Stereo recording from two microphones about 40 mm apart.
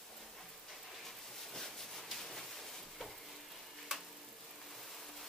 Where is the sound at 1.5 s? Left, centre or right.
Centre.